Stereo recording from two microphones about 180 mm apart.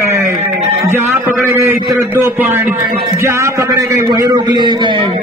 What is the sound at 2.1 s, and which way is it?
A man's voice, 10° right (ahead or behind).